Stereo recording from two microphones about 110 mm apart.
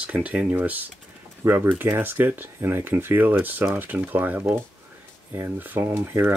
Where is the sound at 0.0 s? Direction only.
10° right (ahead or behind).